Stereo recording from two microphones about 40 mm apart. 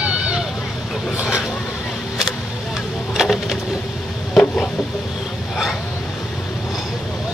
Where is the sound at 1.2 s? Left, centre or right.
Centre.